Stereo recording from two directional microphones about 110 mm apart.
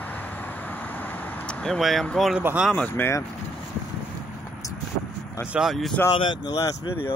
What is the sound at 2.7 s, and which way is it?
Speech, 20° left (ahead or behind).